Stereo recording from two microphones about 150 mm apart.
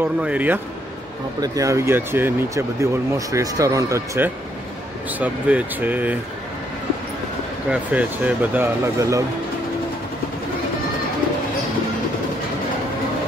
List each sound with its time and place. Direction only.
0.0 s speech: 10° right (ahead or behind)
1.4 s speech: 20° right (ahead or behind)
5.2 s speech: 10° right (ahead or behind)
7.7 s speech: 10° right (ahead or behind)